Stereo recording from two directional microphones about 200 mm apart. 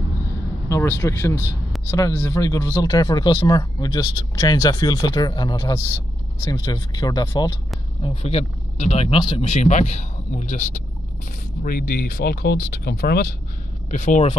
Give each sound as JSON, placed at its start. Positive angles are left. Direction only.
{"t": 0.7, "sound": "speech", "side_deg": 15}
{"t": 8.0, "sound": "speech", "side_deg": 30}
{"t": 11.6, "sound": "speech", "side_deg": 50}
{"t": 13.8, "sound": "speech", "side_deg": 35}